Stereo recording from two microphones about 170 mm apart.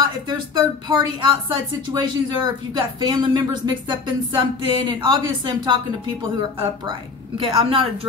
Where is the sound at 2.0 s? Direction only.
25° right (ahead or behind).